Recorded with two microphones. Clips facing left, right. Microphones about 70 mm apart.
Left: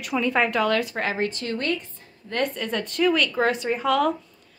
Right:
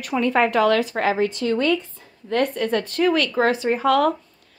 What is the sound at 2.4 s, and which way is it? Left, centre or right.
A woman's voice, right.